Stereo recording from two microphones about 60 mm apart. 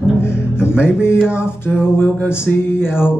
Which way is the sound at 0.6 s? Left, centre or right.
Left.